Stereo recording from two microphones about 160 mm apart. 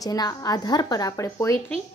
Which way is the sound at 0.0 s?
25° left (ahead or behind).